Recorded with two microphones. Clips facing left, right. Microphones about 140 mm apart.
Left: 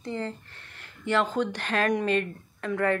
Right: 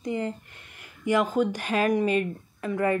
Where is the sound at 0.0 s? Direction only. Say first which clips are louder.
Right 3 dB; 15° right (ahead or behind).